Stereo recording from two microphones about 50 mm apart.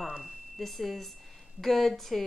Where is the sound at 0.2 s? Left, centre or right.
Centre.